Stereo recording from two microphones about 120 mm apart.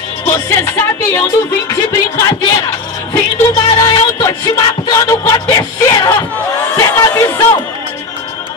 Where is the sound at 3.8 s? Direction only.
30° left (ahead or behind).